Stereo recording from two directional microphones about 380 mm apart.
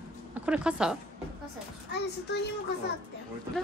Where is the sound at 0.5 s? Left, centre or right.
Centre.